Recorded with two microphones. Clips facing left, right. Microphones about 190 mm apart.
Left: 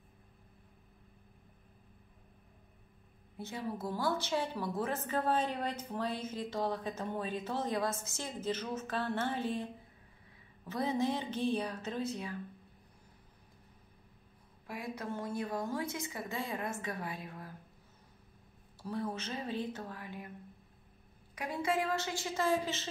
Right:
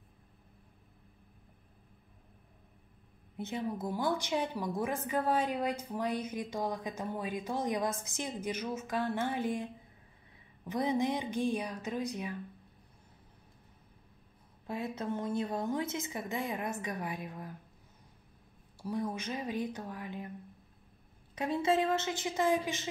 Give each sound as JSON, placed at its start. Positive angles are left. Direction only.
{"t": 3.3, "sound": "a woman's voice", "side_deg": -20}
{"t": 14.7, "sound": "a woman's voice", "side_deg": -25}
{"t": 18.8, "sound": "a woman's voice", "side_deg": -15}
{"t": 21.4, "sound": "a woman's voice", "side_deg": -25}